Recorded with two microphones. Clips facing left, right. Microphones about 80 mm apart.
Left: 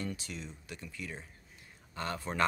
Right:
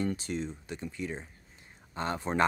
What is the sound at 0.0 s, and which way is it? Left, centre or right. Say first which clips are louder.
Speech: right 8 dB; right.